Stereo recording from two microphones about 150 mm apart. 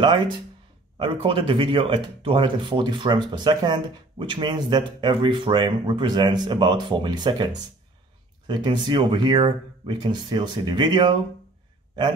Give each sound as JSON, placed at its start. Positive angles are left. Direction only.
{"t": 0.9, "sound": "speech", "side_deg": -35}